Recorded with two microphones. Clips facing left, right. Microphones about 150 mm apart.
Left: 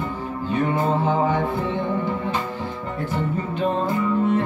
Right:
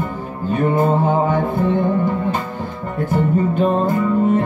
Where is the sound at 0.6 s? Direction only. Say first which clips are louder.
Right 6 dB; 50° right (ahead or behind).